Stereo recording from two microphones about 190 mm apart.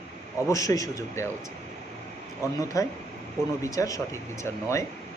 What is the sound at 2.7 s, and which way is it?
Speech, 15° left (ahead or behind).